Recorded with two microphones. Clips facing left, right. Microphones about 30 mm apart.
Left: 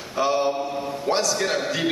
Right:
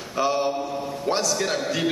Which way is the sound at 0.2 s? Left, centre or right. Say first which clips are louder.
Left 1 dB; left.